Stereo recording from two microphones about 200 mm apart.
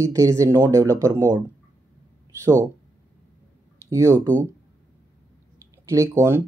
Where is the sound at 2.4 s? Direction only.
15° right (ahead or behind).